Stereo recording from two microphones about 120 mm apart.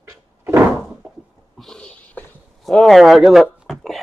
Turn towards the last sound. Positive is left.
turn(degrees=0)  # may be behind; listen again after turning